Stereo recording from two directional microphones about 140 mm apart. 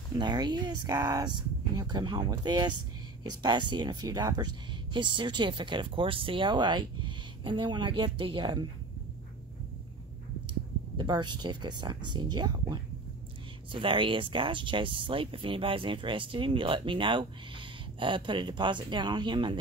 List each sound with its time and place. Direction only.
0.1 s speech: 30° right (ahead or behind)
11.0 s speech: 35° right (ahead or behind)